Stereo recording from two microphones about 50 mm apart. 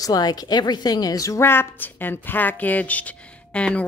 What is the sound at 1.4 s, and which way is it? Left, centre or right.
A woman's voice, left.